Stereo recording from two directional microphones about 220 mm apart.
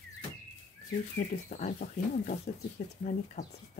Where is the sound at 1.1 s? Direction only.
40° left (ahead or behind).